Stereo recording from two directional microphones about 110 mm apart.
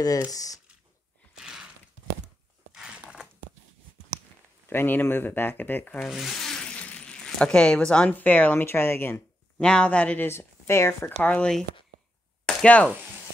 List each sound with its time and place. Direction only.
0.0 s speech: 35° left (ahead or behind)
1.4 s a sound: 5° right (ahead or behind)
2.7 s a sound: 5° right (ahead or behind)
4.6 s speech: 20° left (ahead or behind)
5.9 s speech: centre (ahead or behind); by 9.2 s 20° left (ahead or behind)
9.6 s speech: 10° left (ahead or behind)
11.2 s speech: 10° left (ahead or behind)